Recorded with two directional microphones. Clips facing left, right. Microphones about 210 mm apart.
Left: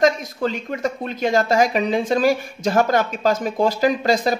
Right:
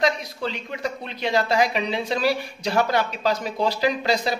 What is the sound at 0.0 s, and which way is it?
Speech, 45° left (ahead or behind).